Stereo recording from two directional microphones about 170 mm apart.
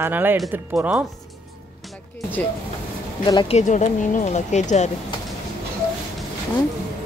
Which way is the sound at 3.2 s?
25° left (ahead or behind).